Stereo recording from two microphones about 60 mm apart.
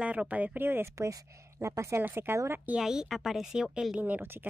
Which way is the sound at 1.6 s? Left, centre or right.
Right.